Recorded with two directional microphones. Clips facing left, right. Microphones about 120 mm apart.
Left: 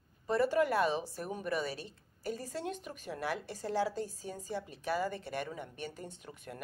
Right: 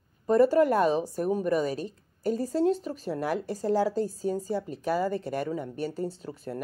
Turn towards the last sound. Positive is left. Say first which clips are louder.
# right 11 dB
turn(degrees=-35)  # may be behind; listen again after turning